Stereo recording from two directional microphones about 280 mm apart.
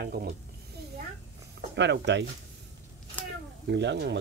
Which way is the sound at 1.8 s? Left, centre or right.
Right.